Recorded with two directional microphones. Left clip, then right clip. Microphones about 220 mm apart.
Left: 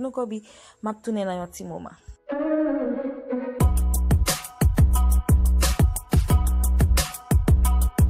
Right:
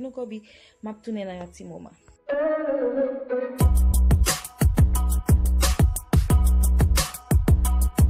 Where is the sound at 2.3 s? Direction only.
Centre (ahead or behind).